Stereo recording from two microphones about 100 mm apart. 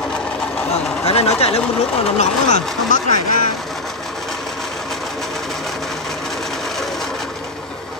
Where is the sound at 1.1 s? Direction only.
90° left.